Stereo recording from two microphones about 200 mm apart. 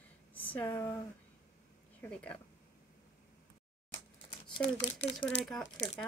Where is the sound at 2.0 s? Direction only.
5° left (ahead or behind).